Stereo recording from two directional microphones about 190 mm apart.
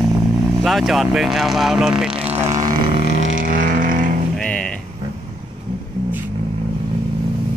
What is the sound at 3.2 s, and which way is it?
Vehicle, 45° right (ahead or behind).